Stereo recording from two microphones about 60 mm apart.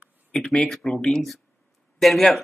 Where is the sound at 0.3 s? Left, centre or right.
Centre.